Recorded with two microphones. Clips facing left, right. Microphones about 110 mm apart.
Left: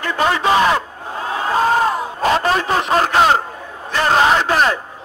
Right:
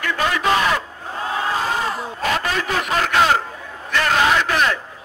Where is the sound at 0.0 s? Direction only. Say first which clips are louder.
Left 3 dB; 30° left (ahead or behind).